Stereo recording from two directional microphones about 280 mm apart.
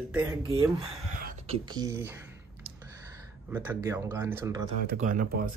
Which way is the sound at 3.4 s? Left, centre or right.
Centre.